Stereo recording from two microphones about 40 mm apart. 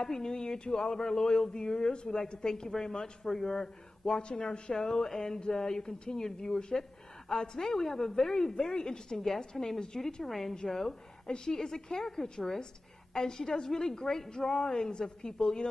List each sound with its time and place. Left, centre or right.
0.0 s speech: centre
10.5 s a woman's voice: centre
10.8 s a woman's voice: centre